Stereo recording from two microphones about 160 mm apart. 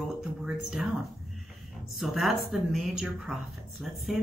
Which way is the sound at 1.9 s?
Centre (ahead or behind).